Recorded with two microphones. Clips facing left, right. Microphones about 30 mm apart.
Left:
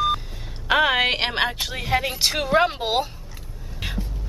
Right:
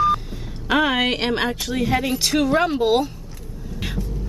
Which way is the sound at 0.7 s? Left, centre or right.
Centre.